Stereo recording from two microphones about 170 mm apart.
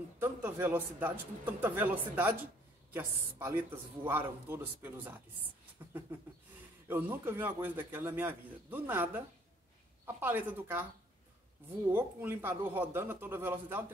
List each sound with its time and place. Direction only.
0.2 s a man's voice: 15° right (ahead or behind)
6.9 s a man's voice: 10° right (ahead or behind)
11.9 s a man's voice: 15° right (ahead or behind)